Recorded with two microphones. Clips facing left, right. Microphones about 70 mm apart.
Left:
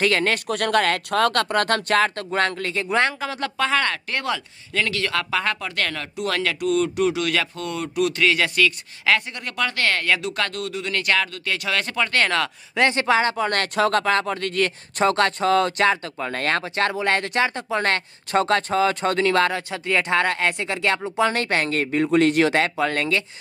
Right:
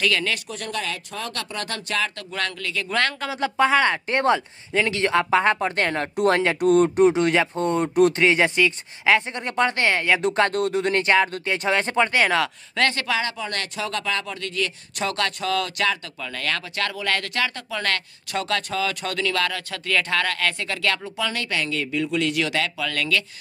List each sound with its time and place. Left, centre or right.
0.0 s speech: left
2.9 s speech: left
3.3 s speech: centre; by 6.6 s right
6.6 s speech: right; by 10.2 s centre
10.2 s speech: right
11.0 s speech: right
12.1 s speech: centre
12.7 s speech: left